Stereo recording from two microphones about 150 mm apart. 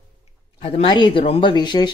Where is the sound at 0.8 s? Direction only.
35° left (ahead or behind).